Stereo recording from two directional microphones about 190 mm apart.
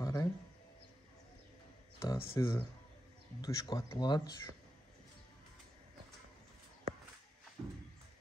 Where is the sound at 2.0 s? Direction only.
15° left (ahead or behind).